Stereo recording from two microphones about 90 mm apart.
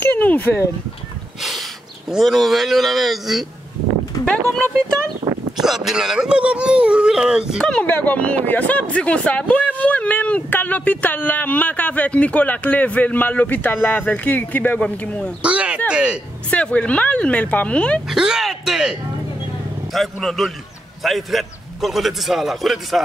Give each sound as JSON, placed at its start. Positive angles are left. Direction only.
{"t": 0.0, "sound": "speech", "side_deg": 20}
{"t": 1.4, "sound": "speech", "side_deg": 0}
{"t": 5.6, "sound": "speech", "side_deg": -5}
{"t": 7.6, "sound": "speech", "side_deg": 15}
{"t": 15.4, "sound": "speech", "side_deg": -15}
{"t": 16.4, "sound": "speech", "side_deg": 15}
{"t": 18.0, "sound": "a man's voice", "side_deg": -5}